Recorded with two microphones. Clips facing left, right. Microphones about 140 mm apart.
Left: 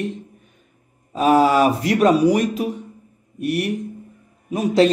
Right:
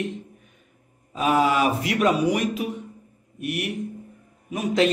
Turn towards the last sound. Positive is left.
turn(degrees=35)  # may be behind; listen again after turning